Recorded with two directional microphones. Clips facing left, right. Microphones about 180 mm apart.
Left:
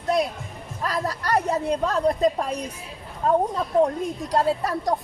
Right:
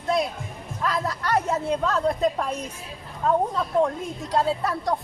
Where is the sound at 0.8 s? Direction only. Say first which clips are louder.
Even; 35° left (ahead or behind).